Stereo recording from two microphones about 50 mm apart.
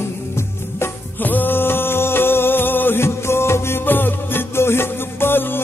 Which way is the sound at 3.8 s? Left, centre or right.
Left.